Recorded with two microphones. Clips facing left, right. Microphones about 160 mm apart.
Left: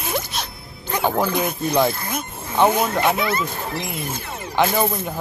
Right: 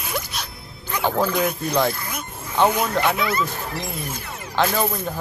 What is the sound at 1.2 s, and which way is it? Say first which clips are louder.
Speech: even; 25° left (ahead or behind).